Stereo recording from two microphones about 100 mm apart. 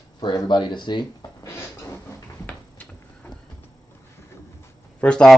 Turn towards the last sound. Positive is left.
turn(degrees=10)  # may be behind; listen again after turning